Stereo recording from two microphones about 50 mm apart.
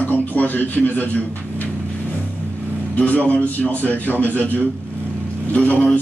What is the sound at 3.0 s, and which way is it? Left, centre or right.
A man's voice, left.